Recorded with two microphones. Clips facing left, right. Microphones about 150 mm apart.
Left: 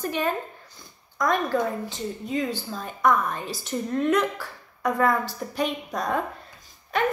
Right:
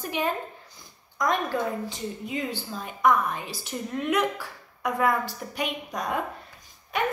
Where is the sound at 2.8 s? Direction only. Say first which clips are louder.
Even; 10° right (ahead or behind).